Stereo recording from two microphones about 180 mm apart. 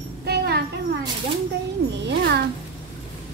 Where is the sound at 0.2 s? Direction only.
65° right (ahead or behind).